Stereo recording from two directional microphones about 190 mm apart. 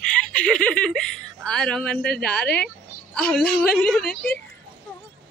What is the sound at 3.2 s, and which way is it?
A woman's voice, 5° left (ahead or behind).